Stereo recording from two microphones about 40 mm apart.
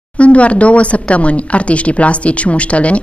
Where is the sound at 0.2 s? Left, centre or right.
Left.